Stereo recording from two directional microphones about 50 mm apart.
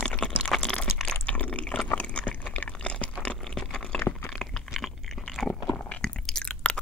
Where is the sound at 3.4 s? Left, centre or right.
Centre.